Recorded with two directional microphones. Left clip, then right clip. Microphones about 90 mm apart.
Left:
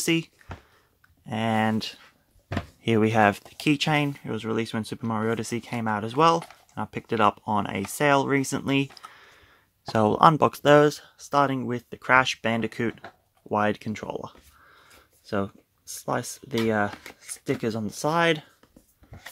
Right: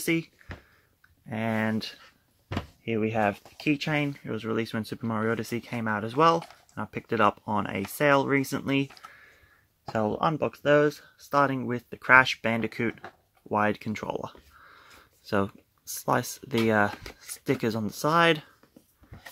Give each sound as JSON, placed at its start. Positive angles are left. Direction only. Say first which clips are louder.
{"t": 0.0, "sound": "speech", "louder": "left 3 dB", "side_deg": 35}
{"t": 3.0, "sound": "speech", "louder": "left 6 dB", "side_deg": 90}
{"t": 3.5, "sound": "speech", "louder": "left 4 dB", "side_deg": 65}
{"t": 3.9, "sound": "speech", "louder": "left 4 dB", "side_deg": 40}
{"t": 4.3, "sound": "speech", "louder": "left 2 dB", "side_deg": 25}
{"t": 10.5, "sound": "speech", "louder": "left 5 dB", "side_deg": 80}
{"t": 10.8, "sound": "speech", "louder": "left 4 dB", "side_deg": 45}
{"t": 11.1, "sound": "speech", "louder": "even", "side_deg": 25}
{"t": 13.9, "sound": "speech", "louder": "right 1 dB", "side_deg": -15}
{"t": 14.7, "sound": "a sound", "louder": "right 1 dB", "side_deg": -5}
{"t": 15.2, "sound": "speech", "louder": "right 1 dB", "side_deg": -25}